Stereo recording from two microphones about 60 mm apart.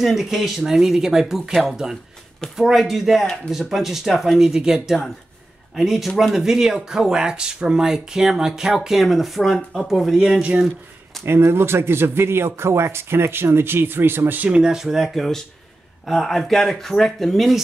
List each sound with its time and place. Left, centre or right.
0.0 s speech: centre
11.2 s speech: right
14.5 s speech: centre